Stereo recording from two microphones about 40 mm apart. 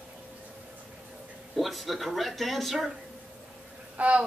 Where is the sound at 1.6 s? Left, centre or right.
Centre.